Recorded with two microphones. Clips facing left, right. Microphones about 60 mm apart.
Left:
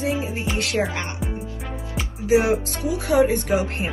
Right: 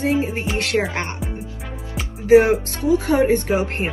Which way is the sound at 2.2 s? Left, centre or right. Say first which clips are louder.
Right 6 dB; right.